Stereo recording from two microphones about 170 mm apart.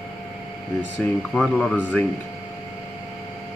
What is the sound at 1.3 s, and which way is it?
Speech, centre (ahead or behind).